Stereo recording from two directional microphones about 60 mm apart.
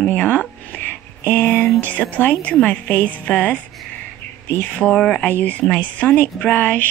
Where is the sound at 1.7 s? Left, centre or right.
Left.